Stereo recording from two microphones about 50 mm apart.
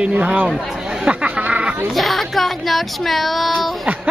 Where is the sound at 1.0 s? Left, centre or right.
Right.